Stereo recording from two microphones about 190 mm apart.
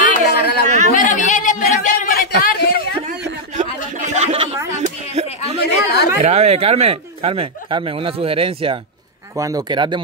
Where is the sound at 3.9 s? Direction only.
35° right (ahead or behind).